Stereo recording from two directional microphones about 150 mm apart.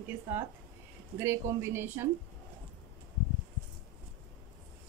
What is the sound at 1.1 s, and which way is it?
Speech, 15° right (ahead or behind).